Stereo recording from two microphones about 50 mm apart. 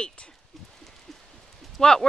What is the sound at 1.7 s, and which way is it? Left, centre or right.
Speech, centre.